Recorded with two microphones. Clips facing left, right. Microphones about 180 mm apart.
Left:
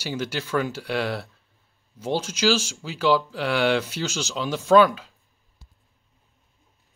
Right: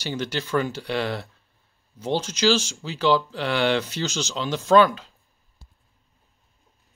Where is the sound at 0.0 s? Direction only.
5° left (ahead or behind).